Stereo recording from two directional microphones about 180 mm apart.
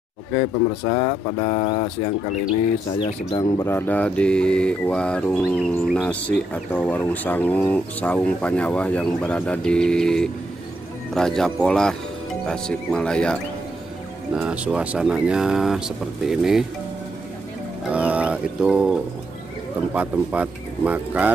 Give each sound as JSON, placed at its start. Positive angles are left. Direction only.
{"t": 0.3, "sound": "speech", "side_deg": 25}
{"t": 2.9, "sound": "speech", "side_deg": 25}
{"t": 14.3, "sound": "speech", "side_deg": -5}
{"t": 17.8, "sound": "music", "side_deg": -5}
{"t": 19.9, "sound": "speech", "side_deg": -10}